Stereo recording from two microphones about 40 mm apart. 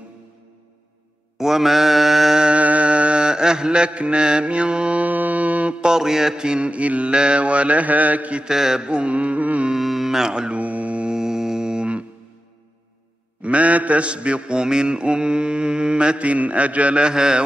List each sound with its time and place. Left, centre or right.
1.4 s mantra: centre
2.6 s music: right
3.3 s mantra: centre
5.0 s music: right
5.8 s mantra: centre; by 8.5 s right
8.5 s mantra: centre; by 9.7 s right
9.8 s speech: centre; by 10.6 s right
10.6 s mantra: right
11.1 s music: centre
13.4 s mantra: right
17.0 s mantra: centre